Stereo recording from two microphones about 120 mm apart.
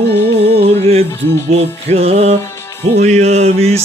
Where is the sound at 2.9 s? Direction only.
70° right (ahead or behind).